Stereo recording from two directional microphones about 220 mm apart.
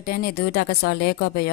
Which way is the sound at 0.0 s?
45° left (ahead or behind).